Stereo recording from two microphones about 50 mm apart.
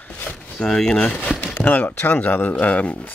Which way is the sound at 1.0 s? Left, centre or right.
Left.